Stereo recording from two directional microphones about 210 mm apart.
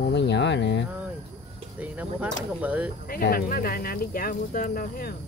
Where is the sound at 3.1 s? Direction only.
45° left (ahead or behind).